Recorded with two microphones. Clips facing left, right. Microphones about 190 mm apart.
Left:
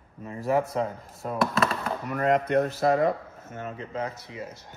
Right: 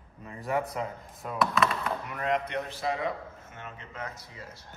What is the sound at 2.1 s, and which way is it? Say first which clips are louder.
Speech: left 9 dB; 50° left (ahead or behind).